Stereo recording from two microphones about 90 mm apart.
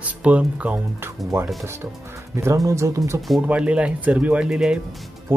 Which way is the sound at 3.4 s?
15° right (ahead or behind).